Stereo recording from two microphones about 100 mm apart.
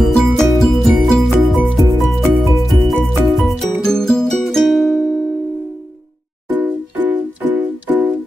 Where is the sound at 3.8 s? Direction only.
5° left (ahead or behind).